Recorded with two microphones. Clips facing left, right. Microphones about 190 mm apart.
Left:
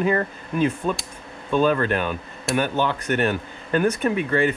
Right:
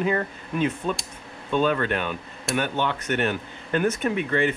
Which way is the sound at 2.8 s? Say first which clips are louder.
Left 3 dB; 40° left (ahead or behind).